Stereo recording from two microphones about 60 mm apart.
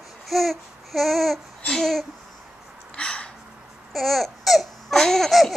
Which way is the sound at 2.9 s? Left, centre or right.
Centre.